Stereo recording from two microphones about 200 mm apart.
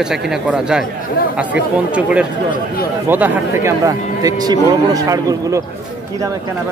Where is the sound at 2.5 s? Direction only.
50° left (ahead or behind).